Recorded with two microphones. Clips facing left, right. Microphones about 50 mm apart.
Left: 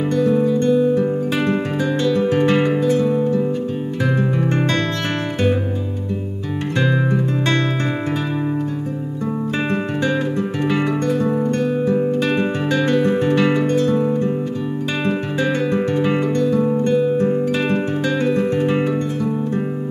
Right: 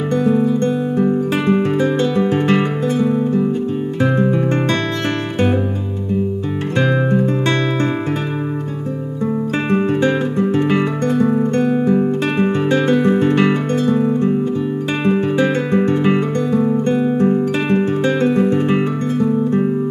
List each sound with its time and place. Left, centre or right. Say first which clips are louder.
0.3 s music: right 2 dB; centre
0.9 s music: right 2 dB; right
4.0 s music: right 4 dB; centre
9.7 s music: right 7 dB; right
11.1 s guitar: right 3 dB; centre
11.5 s music: right 3 dB; right
15.0 s music: right 6 dB; right